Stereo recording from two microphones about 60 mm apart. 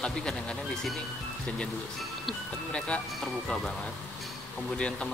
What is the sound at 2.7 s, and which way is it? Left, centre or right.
Speech, centre.